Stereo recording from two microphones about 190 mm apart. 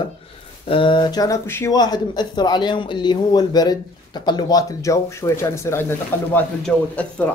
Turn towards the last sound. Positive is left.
turn(degrees=5)  # may be behind; listen again after turning